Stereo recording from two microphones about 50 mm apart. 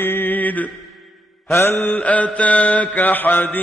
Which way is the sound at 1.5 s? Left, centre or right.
Left.